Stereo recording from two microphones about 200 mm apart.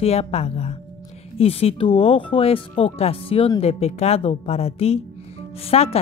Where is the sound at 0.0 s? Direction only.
30° left (ahead or behind).